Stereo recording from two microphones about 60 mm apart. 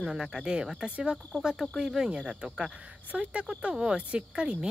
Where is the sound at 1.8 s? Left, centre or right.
Centre.